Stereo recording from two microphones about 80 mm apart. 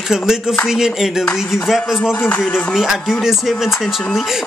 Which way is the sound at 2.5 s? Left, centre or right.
Centre.